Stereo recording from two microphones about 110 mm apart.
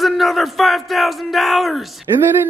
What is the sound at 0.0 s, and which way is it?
A man's voice, centre (ahead or behind).